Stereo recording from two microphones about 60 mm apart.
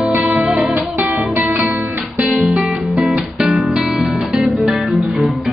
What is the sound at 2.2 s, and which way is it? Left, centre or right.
Music, centre.